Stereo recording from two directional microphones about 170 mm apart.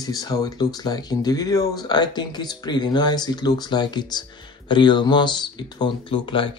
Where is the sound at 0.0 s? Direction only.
20° left (ahead or behind).